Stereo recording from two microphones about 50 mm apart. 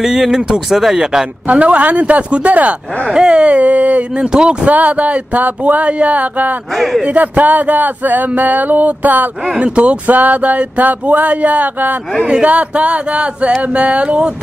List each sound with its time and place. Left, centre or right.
0.0 s speech: centre
1.5 s speech: right
4.3 s speech: centre
4.6 s a sound: right
6.7 s a man's voice: centre
7.1 s a sound: right
9.6 s speech: right
10.1 s a sound: right
12.3 s speech: centre